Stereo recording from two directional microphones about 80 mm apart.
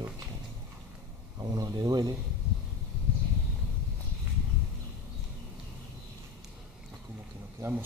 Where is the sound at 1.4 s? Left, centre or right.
Right.